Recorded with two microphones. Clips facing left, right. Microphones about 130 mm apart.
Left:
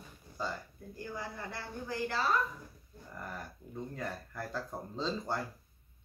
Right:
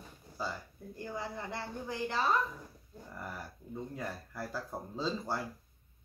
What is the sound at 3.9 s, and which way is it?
Speech, 5° right (ahead or behind).